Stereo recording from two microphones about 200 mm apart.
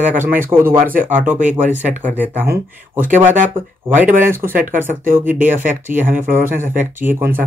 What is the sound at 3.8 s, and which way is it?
Speech, 10° right (ahead or behind).